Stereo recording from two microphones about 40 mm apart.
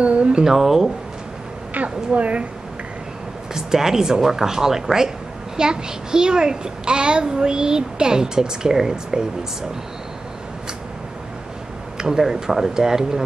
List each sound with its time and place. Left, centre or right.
0.0 s a woman's voice: right
0.4 s speech: centre
1.7 s a woman's voice: right
3.5 s a child's voice: centre
12.0 s speech: centre